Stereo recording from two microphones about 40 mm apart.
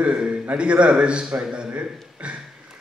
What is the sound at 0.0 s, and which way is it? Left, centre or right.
A man's voice, right.